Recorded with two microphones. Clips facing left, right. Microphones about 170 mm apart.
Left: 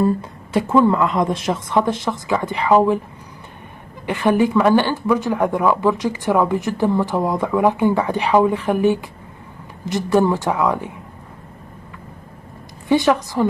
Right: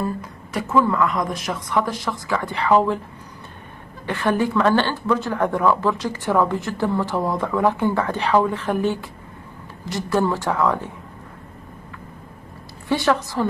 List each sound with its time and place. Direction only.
0.0 s a woman's voice: 30° left (ahead or behind)
4.0 s speech: 15° left (ahead or behind)
12.8 s speech: 15° left (ahead or behind)